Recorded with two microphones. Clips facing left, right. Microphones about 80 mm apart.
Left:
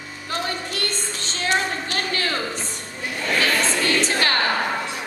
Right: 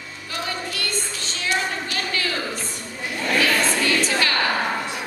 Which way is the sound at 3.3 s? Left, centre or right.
Left.